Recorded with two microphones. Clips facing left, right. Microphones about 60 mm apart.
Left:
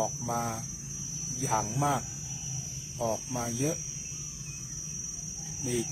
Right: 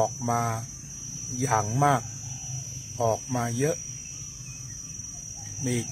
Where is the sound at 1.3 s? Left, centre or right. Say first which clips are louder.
Right 5 dB; right.